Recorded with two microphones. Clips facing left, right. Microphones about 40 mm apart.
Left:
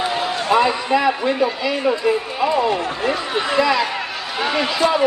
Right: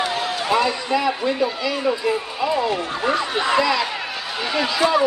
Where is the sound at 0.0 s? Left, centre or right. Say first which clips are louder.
Left 2 dB; centre.